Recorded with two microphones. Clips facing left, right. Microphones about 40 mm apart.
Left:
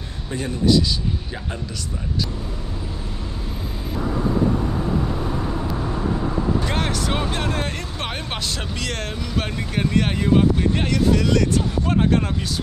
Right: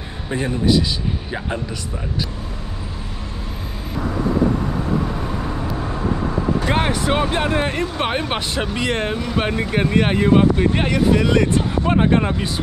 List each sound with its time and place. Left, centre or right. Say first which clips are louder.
0.3 s speech: right 1 dB; right
6.6 s speech: right 4 dB; right